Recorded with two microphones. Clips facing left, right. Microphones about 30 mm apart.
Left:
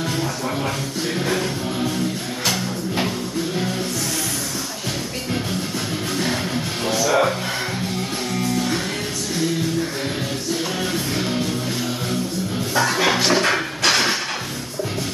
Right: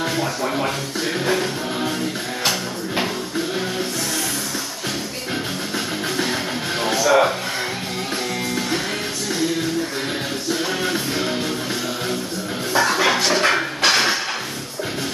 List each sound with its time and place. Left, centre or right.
1.2 s music: centre
6.8 s music: centre
8.4 s music: centre
10.5 s music: centre
12.7 s music: centre
13.4 s a sound: centre